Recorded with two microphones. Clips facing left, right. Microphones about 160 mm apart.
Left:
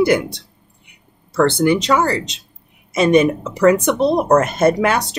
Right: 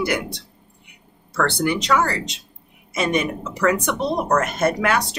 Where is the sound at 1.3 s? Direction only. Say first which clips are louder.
Left 7 dB; 25° left (ahead or behind).